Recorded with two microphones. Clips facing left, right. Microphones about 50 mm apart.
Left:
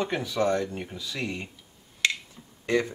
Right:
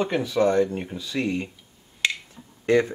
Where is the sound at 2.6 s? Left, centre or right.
Right.